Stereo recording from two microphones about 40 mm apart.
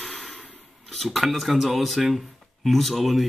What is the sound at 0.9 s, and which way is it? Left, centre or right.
Speech, centre.